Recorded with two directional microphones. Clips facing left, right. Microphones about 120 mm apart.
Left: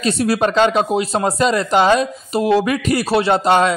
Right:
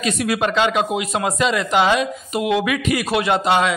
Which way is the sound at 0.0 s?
35° left (ahead or behind).